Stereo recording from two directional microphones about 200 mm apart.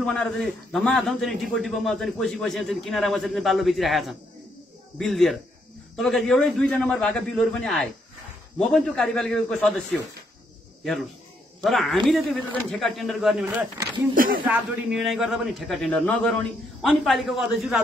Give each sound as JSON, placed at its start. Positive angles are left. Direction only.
{"t": 0.0, "sound": "a man's voice", "side_deg": 5}
{"t": 14.1, "sound": "speech", "side_deg": -45}
{"t": 14.4, "sound": "a man's voice", "side_deg": -5}